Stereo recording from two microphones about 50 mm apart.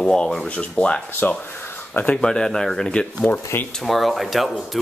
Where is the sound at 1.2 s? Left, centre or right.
Left.